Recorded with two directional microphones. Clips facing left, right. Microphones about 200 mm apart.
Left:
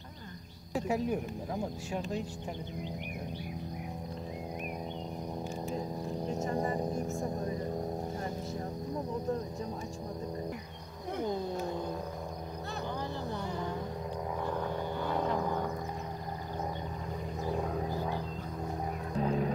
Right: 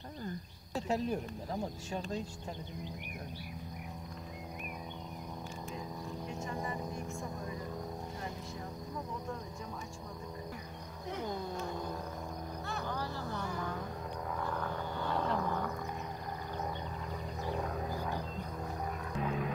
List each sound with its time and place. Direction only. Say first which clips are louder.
0.7 s speech: left 3 dB; 15° left (ahead or behind)
5.7 s cricket: left 6 dB; 40° left (ahead or behind)
12.9 s vehicle: left 2 dB; 20° left (ahead or behind)
14.4 s a sound: left 4 dB; 20° left (ahead or behind)
19.1 s wild animals: left 6 dB; 35° left (ahead or behind)